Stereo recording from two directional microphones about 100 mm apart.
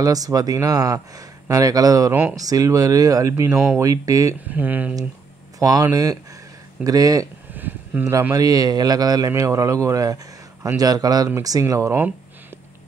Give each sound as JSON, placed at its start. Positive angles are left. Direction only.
{"t": 0.0, "sound": "a man's voice", "side_deg": -35}
{"t": 4.5, "sound": "speech", "side_deg": -15}
{"t": 5.6, "sound": "a man's voice", "side_deg": -35}
{"t": 7.5, "sound": "a sound", "side_deg": -15}
{"t": 8.1, "sound": "a man's voice", "side_deg": -30}